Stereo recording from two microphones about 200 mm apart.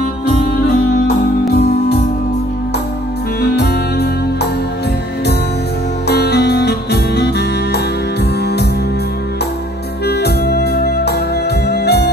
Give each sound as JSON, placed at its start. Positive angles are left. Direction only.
{"t": 1.5, "sound": "music", "side_deg": 55}
{"t": 3.5, "sound": "music", "side_deg": 55}
{"t": 6.0, "sound": "music", "side_deg": 55}
{"t": 10.0, "sound": "music", "side_deg": 55}